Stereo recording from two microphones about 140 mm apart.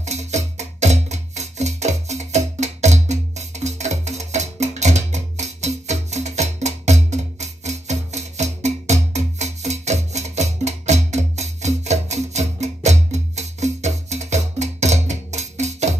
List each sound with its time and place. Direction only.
0.0 s music: 55° right (ahead or behind)